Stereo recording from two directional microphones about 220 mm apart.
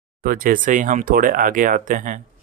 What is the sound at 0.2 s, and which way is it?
Speech, 40° right (ahead or behind).